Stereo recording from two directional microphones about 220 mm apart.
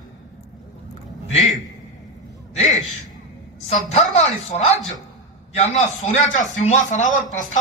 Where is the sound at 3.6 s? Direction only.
30° left (ahead or behind).